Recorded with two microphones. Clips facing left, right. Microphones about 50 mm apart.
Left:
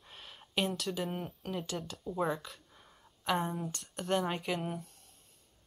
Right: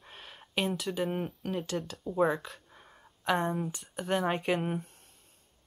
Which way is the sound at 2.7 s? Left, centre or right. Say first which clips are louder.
Right 4 dB; right.